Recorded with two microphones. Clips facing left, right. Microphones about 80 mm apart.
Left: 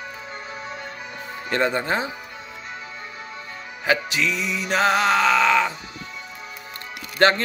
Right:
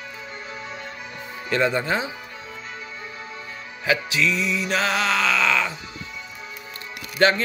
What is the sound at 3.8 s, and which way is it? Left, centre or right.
Music, left.